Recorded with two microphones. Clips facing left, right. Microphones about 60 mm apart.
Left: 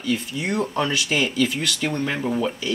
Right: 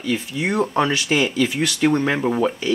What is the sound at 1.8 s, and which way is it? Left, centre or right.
Speech, right.